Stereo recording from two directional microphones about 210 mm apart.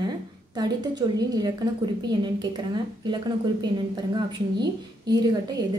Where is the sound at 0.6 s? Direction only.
20° right (ahead or behind).